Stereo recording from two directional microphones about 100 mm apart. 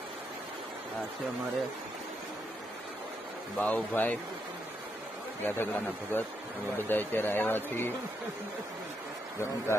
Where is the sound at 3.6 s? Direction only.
20° left (ahead or behind).